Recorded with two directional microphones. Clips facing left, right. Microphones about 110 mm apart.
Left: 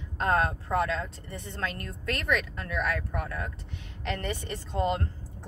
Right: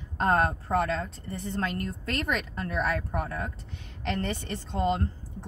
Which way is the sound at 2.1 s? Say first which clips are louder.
Left 1 dB; 35° right (ahead or behind).